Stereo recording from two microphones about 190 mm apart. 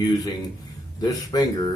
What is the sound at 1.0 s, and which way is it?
Speech, 20° left (ahead or behind).